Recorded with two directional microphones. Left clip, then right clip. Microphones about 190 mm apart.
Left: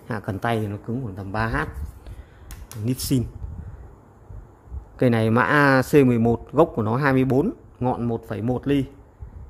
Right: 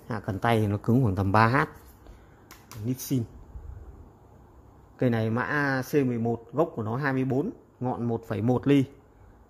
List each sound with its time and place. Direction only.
0.1 s speech: centre (ahead or behind)
0.5 s speech: 20° right (ahead or behind)
0.9 s speech: 30° right (ahead or behind)
2.8 s speech: 10° left (ahead or behind)
4.9 s speech: 5° left (ahead or behind)
8.2 s speech: 10° right (ahead or behind)